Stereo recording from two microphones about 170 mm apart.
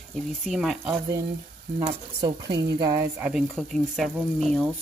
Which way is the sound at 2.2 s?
25° right (ahead or behind).